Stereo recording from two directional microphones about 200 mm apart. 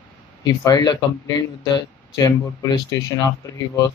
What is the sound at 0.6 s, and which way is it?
Speech, 20° left (ahead or behind).